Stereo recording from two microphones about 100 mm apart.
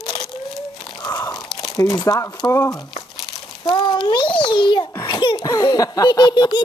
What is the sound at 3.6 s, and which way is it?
A child's voice, 50° left (ahead or behind).